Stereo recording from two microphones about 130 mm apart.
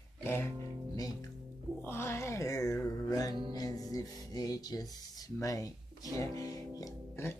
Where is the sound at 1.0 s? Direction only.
30° left (ahead or behind).